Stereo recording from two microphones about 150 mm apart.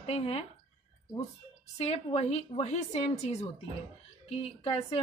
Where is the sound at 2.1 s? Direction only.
45° left (ahead or behind).